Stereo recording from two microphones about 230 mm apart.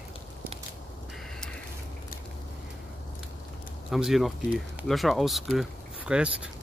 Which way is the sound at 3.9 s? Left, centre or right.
Centre.